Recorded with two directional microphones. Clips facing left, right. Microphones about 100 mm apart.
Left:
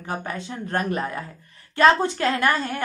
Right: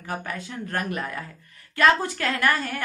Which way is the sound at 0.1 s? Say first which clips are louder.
Left 2 dB; 25° left (ahead or behind).